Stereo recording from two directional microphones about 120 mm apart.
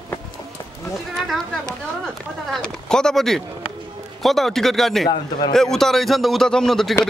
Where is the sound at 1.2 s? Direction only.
Centre (ahead or behind).